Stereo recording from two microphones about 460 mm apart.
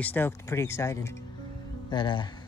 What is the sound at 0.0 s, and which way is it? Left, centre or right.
Speech, centre.